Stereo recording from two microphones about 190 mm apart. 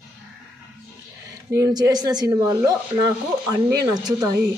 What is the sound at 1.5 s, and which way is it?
A woman's voice, 20° right (ahead or behind).